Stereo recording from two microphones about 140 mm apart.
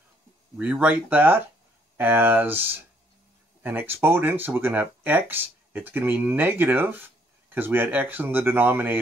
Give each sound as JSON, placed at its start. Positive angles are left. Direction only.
{"t": 0.6, "sound": "speech", "side_deg": -10}